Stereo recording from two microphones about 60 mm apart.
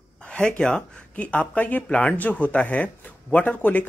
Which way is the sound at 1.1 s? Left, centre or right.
Left.